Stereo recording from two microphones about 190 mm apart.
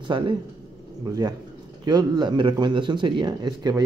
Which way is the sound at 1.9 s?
20° right (ahead or behind).